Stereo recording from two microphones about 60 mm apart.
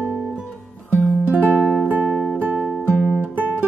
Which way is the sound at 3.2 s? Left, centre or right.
Right.